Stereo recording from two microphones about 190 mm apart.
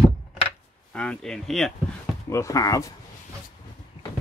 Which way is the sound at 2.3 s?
15° left (ahead or behind).